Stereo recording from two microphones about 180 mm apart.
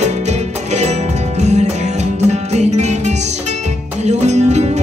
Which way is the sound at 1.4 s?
40° right (ahead or behind).